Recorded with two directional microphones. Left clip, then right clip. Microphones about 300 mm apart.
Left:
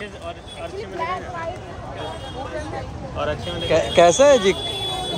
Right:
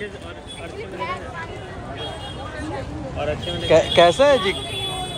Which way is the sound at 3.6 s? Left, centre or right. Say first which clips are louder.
Right 1 dB; centre.